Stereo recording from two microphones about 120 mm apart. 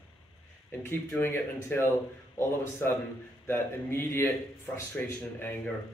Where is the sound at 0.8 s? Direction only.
20° left (ahead or behind).